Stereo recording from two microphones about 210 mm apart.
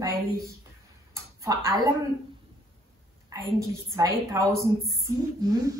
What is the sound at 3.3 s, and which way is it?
A woman's voice, 15° right (ahead or behind).